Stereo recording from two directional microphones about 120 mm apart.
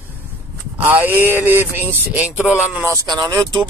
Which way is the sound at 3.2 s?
30° right (ahead or behind).